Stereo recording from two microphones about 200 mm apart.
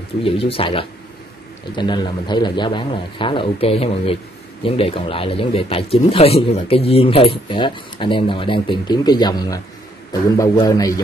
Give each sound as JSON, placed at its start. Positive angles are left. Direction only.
{"t": 0.2, "sound": "a man's voice", "side_deg": 30}